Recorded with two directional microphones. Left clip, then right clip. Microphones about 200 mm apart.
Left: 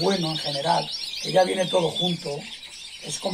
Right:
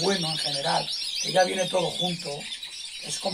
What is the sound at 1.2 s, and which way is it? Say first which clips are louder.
Speech: left 3 dB; 10° right (ahead or behind).